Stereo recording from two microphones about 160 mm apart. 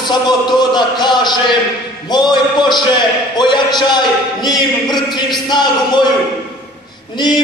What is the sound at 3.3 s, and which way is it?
Speech, 30° left (ahead or behind).